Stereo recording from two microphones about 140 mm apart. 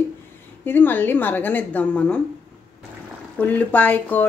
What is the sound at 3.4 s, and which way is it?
Speech, 10° left (ahead or behind).